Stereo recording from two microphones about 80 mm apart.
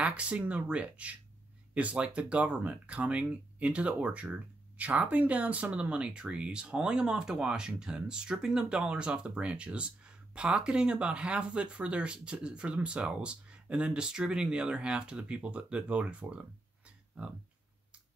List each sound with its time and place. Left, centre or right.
0.0 s speech: centre